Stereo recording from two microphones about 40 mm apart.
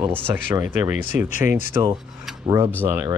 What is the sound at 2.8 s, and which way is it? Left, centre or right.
Speech, right.